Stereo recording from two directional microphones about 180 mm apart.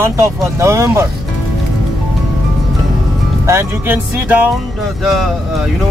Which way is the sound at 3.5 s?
15° right (ahead or behind).